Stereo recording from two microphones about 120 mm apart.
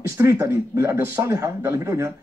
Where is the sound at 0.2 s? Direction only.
25° right (ahead or behind).